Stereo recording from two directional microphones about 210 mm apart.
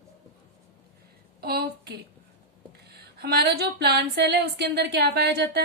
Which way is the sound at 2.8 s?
50° right (ahead or behind).